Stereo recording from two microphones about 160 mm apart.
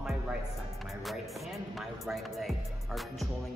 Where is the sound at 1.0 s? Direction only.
Centre (ahead or behind).